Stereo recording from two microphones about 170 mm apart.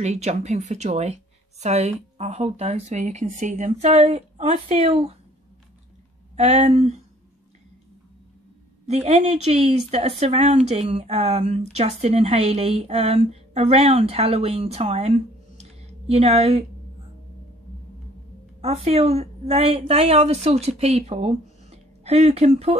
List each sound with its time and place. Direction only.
0.0 s a woman's voice: 40° right (ahead or behind)
6.3 s a woman's voice: 40° right (ahead or behind)
8.8 s a woman's voice: 40° right (ahead or behind)
18.6 s a woman's voice: 40° right (ahead or behind)